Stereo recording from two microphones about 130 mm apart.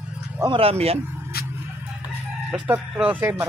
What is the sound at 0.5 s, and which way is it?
Speech, 45° right (ahead or behind).